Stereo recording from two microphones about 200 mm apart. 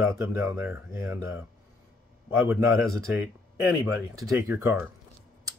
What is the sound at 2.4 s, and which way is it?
Speech, centre (ahead or behind).